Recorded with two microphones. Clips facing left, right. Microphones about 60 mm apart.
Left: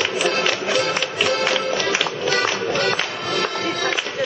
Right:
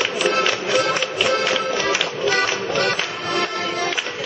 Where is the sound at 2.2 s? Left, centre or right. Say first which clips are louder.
Right 1 dB; right.